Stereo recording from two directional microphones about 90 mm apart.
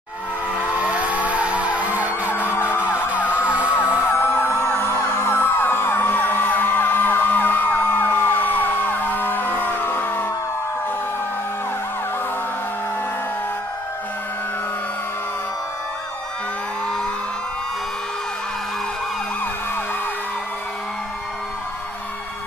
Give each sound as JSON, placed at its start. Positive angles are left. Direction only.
{"t": 0.6, "sound": "vehicle", "side_deg": -15}
{"t": 2.5, "sound": "emergency vehicle", "side_deg": 25}
{"t": 2.8, "sound": "emergency vehicle", "side_deg": -15}
{"t": 4.1, "sound": "emergency vehicle", "side_deg": 25}